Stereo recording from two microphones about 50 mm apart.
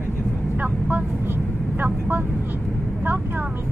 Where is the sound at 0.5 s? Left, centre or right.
Right.